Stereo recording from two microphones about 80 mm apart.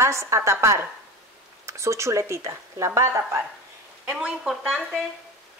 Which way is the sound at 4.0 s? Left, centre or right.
Centre.